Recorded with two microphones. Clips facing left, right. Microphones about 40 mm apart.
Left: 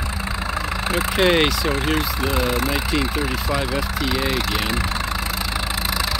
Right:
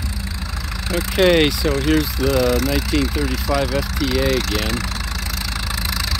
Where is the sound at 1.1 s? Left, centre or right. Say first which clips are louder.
Right 3 dB; centre.